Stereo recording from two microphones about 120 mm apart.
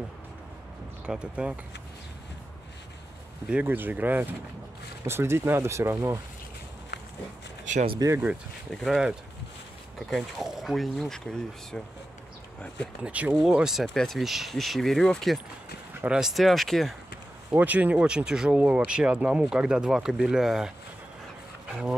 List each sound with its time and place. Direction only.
1.0 s speech: 10° right (ahead or behind)
3.4 s speech: 15° right (ahead or behind)
8.0 s speech: 35° right (ahead or behind)
8.7 s speech: 5° left (ahead or behind)
13.0 s speech: 10° right (ahead or behind)
17.5 s speech: 15° right (ahead or behind)